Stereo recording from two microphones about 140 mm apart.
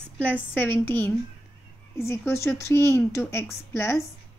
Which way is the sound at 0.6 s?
15° left (ahead or behind).